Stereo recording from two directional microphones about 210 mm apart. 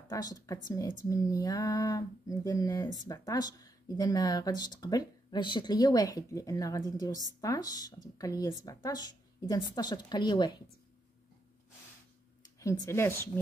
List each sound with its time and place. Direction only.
0.1 s a sound: 15° left (ahead or behind)
7.3 s speech: 15° left (ahead or behind)
12.5 s speech: 15° left (ahead or behind)